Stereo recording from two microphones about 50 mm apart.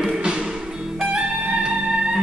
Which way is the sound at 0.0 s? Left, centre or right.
Centre.